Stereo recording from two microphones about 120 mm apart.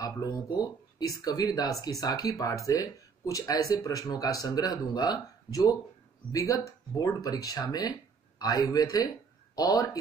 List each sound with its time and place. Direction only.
0.0 s speech: 30° left (ahead or behind)